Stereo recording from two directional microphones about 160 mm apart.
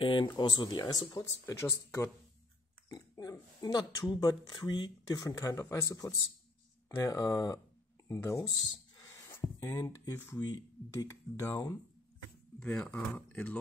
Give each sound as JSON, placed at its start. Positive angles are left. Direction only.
{"t": 0.0, "sound": "speech", "side_deg": 30}
{"t": 2.9, "sound": "oink", "side_deg": 25}
{"t": 4.1, "sound": "speech", "side_deg": 25}
{"t": 9.6, "sound": "speech", "side_deg": 15}
{"t": 10.4, "sound": "speech", "side_deg": 25}